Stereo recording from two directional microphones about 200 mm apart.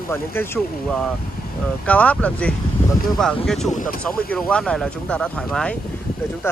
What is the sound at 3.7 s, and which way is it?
Speech, 40° left (ahead or behind).